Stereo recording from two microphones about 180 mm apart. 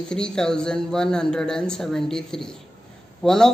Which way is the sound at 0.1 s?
5° left (ahead or behind).